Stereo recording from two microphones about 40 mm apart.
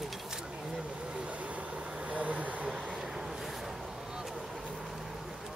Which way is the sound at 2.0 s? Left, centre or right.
Right.